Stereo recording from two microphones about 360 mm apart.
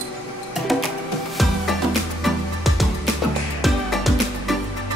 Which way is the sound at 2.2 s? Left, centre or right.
Centre.